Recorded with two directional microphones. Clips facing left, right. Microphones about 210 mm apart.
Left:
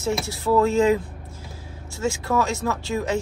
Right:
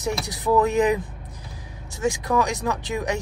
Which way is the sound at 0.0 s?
20° right (ahead or behind).